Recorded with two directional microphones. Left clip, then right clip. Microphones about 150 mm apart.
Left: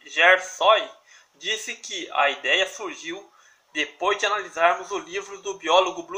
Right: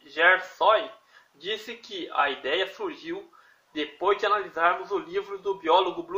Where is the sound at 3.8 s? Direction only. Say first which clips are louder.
Left 2 dB; 25° left (ahead or behind).